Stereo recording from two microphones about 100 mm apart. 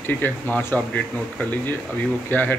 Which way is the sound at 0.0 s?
20° left (ahead or behind).